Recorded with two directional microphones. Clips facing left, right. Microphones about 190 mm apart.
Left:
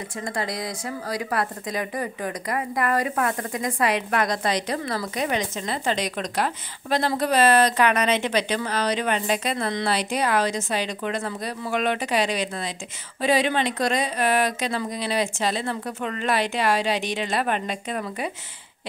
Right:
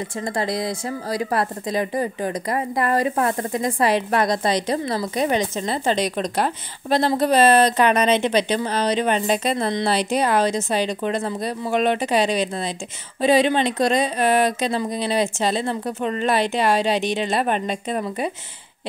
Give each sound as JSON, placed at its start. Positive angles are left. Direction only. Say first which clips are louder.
{"t": 0.4, "sound": "speech", "louder": "right 6 dB", "side_deg": -25}